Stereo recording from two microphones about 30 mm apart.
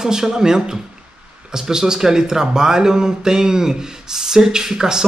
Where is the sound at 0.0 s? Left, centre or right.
Centre.